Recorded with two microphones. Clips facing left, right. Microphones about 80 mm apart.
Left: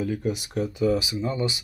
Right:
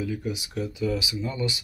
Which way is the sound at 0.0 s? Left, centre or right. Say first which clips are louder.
Left 3 dB; left.